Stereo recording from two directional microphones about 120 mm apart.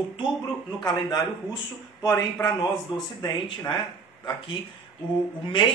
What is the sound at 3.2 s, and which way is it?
Speech, 40° left (ahead or behind).